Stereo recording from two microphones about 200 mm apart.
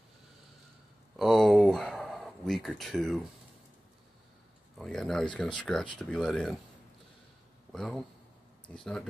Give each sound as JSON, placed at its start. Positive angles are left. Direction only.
{"t": 1.1, "sound": "a sound", "side_deg": 0}
{"t": 4.7, "sound": "speech", "side_deg": 0}
{"t": 7.7, "sound": "speech", "side_deg": 0}